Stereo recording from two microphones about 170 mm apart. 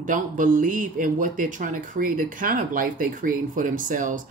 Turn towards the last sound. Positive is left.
turn(degrees=-50)  # may be behind; listen again after turning